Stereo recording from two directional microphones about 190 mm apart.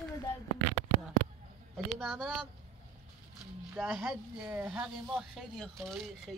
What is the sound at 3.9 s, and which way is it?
Speech, 5° right (ahead or behind).